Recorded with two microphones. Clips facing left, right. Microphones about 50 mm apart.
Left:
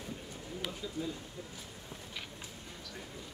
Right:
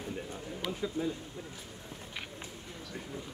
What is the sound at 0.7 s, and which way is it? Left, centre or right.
Speech, right.